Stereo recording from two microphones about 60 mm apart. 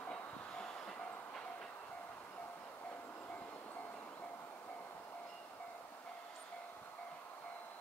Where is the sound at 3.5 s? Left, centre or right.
Left.